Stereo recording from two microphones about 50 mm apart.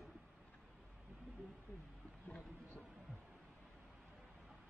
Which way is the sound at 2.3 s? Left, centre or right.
Left.